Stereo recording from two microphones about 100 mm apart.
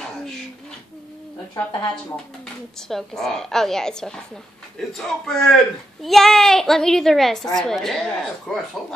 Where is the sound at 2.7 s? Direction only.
5° left (ahead or behind).